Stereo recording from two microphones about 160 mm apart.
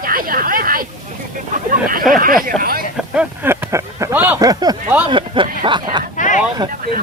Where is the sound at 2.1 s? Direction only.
60° right (ahead or behind).